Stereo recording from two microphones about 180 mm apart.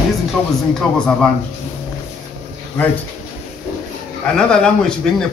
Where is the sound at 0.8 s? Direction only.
5° left (ahead or behind).